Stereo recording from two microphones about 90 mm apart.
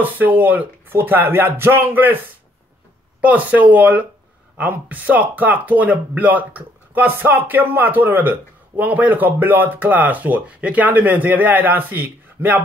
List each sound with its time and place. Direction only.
0.0 s speech: 20° right (ahead or behind)
3.2 s speech: 15° right (ahead or behind)